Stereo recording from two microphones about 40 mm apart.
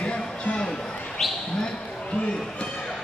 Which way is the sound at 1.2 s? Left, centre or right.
Centre.